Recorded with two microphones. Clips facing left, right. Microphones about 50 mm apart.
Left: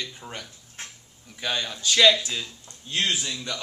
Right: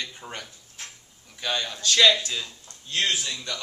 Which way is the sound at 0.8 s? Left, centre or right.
Left.